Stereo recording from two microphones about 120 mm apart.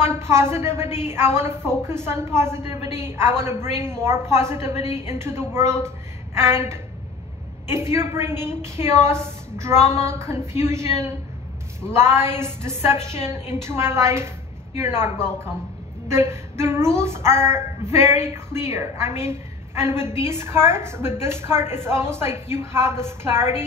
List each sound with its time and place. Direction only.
0.0 s a woman's voice: 20° right (ahead or behind)